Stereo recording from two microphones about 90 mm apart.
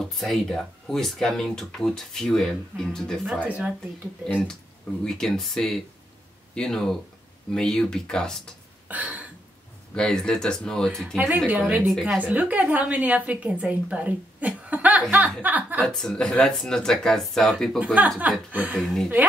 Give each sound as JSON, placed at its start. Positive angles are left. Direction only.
{"t": 0.0, "sound": "speech", "side_deg": 0}
{"t": 3.4, "sound": "a woman's voice", "side_deg": -15}
{"t": 4.3, "sound": "speech", "side_deg": 15}
{"t": 8.8, "sound": "a sound", "side_deg": -15}
{"t": 9.9, "sound": "speech", "side_deg": 10}
{"t": 11.1, "sound": "a woman's voice", "side_deg": -15}
{"t": 15.8, "sound": "speech", "side_deg": 5}
{"t": 17.7, "sound": "a woman's voice", "side_deg": -15}